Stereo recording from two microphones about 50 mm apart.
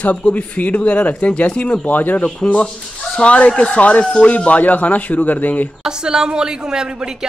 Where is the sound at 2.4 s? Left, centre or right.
Left.